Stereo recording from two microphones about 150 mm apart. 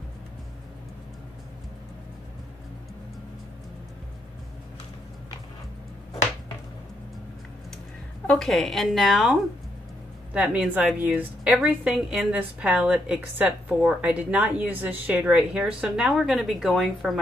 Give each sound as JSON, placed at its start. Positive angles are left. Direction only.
{"t": 8.3, "sound": "a woman's voice", "side_deg": 0}